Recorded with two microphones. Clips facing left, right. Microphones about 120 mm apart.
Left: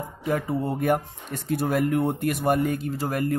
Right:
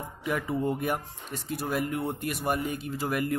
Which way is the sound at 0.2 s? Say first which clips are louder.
Left 3 dB; 40° left (ahead or behind).